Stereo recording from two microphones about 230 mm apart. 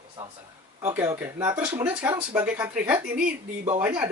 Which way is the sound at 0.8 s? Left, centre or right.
Centre.